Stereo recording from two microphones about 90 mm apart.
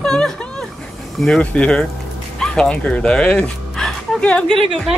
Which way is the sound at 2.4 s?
10° left (ahead or behind).